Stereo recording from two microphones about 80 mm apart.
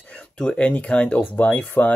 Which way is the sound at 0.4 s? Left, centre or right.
Centre.